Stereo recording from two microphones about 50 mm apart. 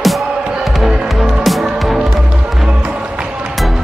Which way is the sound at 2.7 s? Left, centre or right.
Right.